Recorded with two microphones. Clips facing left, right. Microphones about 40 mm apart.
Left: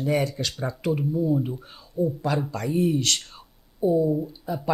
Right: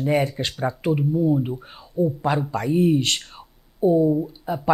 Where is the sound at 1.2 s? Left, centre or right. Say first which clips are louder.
Right 3 dB; centre.